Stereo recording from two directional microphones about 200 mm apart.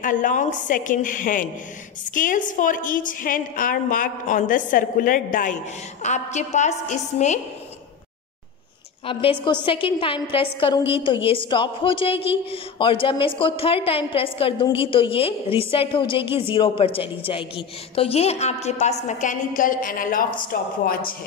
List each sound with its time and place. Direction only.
0.0 s a woman's voice: 40° left (ahead or behind)
9.0 s a woman's voice: 25° left (ahead or behind); by 21.1 s 45° left (ahead or behind)